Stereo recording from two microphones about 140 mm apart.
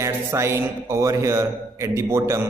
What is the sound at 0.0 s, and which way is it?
A man's voice, 20° right (ahead or behind).